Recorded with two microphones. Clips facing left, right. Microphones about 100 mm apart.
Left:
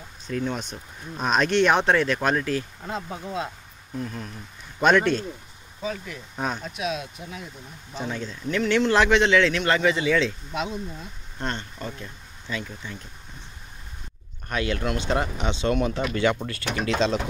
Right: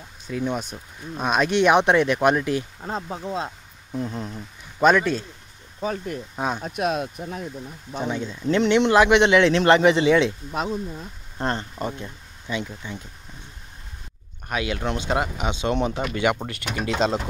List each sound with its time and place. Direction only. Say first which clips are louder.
0.3 s speech: right 2 dB; 10° right (ahead or behind)
4.8 s speech: right 1 dB; 5° right (ahead or behind)
5.8 s speech: right 4 dB; 45° right (ahead or behind)
6.3 s speech: right 1 dB; 5° right (ahead or behind)
6.6 s speech: right 5 dB; 50° right (ahead or behind)
8.1 s speech: right 4 dB; 5° right (ahead or behind)
8.5 s speech: right 4 dB; 25° right (ahead or behind)
8.9 s speech: right 3 dB; 10° right (ahead or behind)
9.2 s speech: right 4 dB; 20° right (ahead or behind)
11.3 s speech: right 5 dB; 35° right (ahead or behind)
12.0 s a sound: right 3 dB; 20° right (ahead or behind)
12.6 s speech: right 3 dB; 10° right (ahead or behind)
14.5 s speech: even; 15° right (ahead or behind)
15.7 s speech: even; 25° right (ahead or behind)